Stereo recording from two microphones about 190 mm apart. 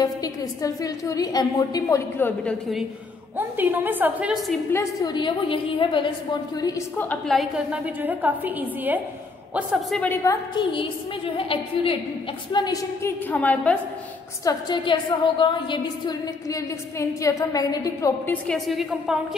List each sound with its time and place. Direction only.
0.0 s a woman's voice: 20° left (ahead or behind)
3.3 s a woman's voice: 10° right (ahead or behind)
4.7 s a woman's voice: 25° left (ahead or behind)
6.6 s a woman's voice: 10° left (ahead or behind)
10.2 s a woman's voice: 25° left (ahead or behind); by 13.7 s 10° left (ahead or behind)
14.4 s a woman's voice: 20° left (ahead or behind); by 19.1 s centre (ahead or behind)